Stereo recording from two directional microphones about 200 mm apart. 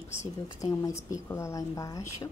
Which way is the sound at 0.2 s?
15° left (ahead or behind).